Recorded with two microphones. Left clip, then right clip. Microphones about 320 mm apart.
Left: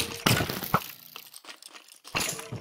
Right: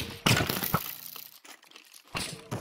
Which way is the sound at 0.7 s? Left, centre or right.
Centre.